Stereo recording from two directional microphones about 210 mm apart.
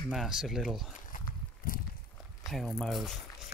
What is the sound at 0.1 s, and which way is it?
Speech, centre (ahead or behind).